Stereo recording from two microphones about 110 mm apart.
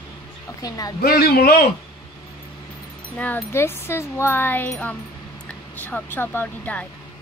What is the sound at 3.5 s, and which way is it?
Speech, 20° left (ahead or behind).